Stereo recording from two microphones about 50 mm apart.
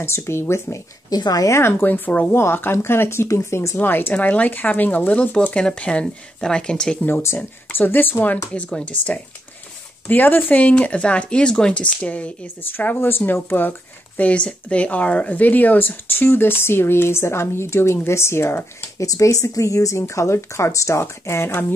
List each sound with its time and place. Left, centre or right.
0.0 s speech: left
1.5 s speech: left
2.3 s speech: left
3.8 s speech: left
4.1 s speech: left
5.4 s speech: centre
7.3 s speech: left
8.8 s speech: left
12.7 s speech: left
14.1 s speech: left
18.9 s speech: left